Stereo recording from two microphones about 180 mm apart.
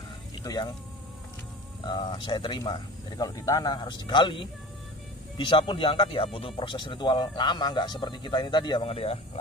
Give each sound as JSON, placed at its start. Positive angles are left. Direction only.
{"t": 0.4, "sound": "speech", "side_deg": 20}
{"t": 1.9, "sound": "speech", "side_deg": 25}